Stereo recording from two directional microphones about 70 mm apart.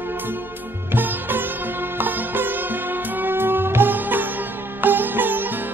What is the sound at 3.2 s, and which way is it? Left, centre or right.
Music, right.